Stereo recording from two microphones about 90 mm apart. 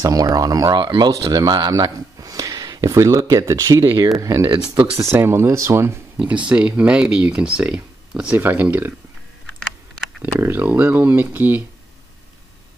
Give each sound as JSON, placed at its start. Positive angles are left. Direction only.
{"t": 0.0, "sound": "speech", "side_deg": -45}
{"t": 4.7, "sound": "speech", "side_deg": -30}
{"t": 6.1, "sound": "speech", "side_deg": -15}
{"t": 8.4, "sound": "speech", "side_deg": -20}
{"t": 10.4, "sound": "speech", "side_deg": -25}